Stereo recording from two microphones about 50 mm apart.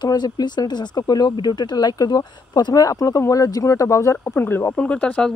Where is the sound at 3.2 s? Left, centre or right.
Left.